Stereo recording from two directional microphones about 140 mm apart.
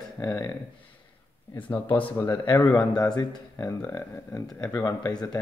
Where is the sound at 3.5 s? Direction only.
20° left (ahead or behind).